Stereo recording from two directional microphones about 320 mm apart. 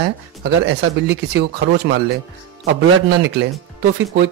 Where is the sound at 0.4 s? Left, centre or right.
Right.